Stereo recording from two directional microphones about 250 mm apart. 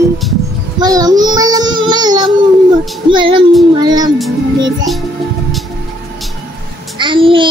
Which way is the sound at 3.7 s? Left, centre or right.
Centre.